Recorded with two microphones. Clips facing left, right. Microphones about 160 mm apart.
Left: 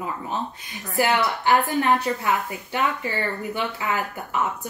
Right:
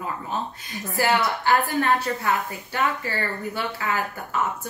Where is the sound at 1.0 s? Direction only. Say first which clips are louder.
Left 1 dB; 20° left (ahead or behind).